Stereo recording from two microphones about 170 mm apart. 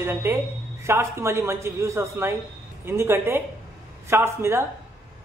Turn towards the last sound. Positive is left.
turn(degrees=-15)  # may be behind; listen again after turning